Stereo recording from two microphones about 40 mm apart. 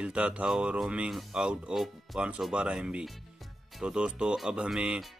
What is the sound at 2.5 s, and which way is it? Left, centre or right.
Speech, right.